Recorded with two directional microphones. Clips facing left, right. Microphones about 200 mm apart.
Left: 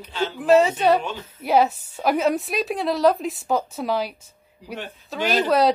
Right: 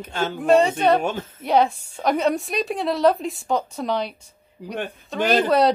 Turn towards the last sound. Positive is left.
turn(degrees=0)  # may be behind; listen again after turning